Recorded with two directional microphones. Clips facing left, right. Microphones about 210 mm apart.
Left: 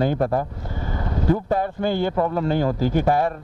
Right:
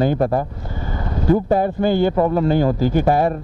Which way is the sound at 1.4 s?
10° right (ahead or behind).